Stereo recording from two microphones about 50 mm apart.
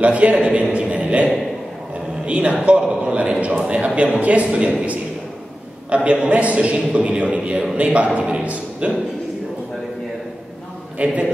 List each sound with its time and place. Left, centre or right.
0.0 s a sound: right
2.6 s a man's voice: right
6.0 s a man's voice: right
11.0 s a man's voice: right